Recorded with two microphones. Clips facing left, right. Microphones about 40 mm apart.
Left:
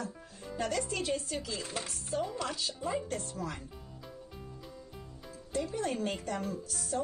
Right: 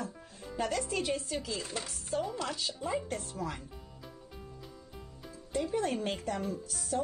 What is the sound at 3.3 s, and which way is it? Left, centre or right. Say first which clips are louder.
Speech: right 1 dB; right.